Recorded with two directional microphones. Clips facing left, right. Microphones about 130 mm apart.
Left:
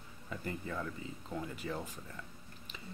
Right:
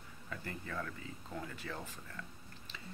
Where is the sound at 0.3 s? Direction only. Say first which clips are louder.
Left 4 dB; 20° left (ahead or behind).